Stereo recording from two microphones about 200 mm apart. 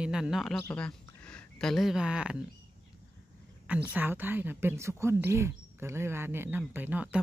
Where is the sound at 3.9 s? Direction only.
10° right (ahead or behind).